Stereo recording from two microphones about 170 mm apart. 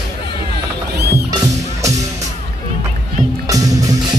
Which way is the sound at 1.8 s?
20° right (ahead or behind).